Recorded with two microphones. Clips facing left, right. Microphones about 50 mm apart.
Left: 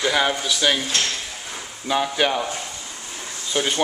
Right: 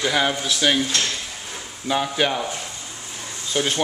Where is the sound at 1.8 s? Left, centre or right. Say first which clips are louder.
Left 1 dB; centre.